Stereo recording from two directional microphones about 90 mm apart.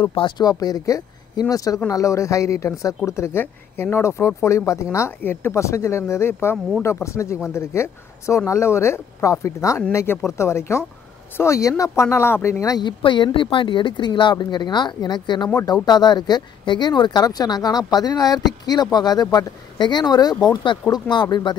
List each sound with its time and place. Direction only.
0.4 s a woman's voice: 45° left (ahead or behind)
12.7 s speech: 60° left (ahead or behind)
20.4 s speech: 60° left (ahead or behind)